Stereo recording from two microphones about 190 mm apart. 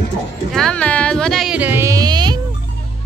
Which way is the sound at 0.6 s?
5° left (ahead or behind).